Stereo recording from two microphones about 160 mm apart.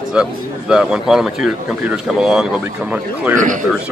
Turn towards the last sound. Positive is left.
turn(degrees=-55)  # may be behind; listen again after turning